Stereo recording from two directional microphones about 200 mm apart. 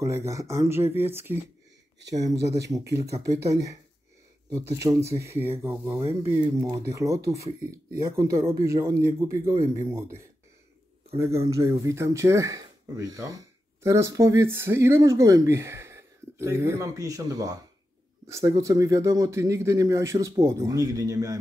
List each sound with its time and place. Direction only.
0.0 s speech: 15° right (ahead or behind)
2.4 s speech: 15° right (ahead or behind)
4.8 s speech: 15° right (ahead or behind)
5.9 s speech: 30° right (ahead or behind)